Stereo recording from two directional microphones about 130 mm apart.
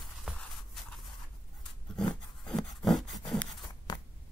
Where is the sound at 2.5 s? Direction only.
5° left (ahead or behind).